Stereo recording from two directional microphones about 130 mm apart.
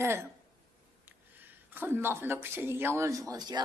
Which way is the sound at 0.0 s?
20° right (ahead or behind).